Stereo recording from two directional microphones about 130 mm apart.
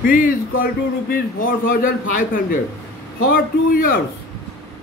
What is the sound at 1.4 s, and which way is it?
A man's voice, 90° left.